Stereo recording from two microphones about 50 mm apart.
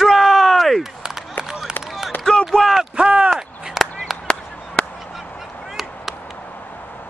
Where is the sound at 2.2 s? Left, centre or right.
Centre.